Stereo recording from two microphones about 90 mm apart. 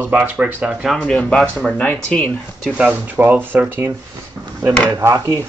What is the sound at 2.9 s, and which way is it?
Speech, 20° right (ahead or behind).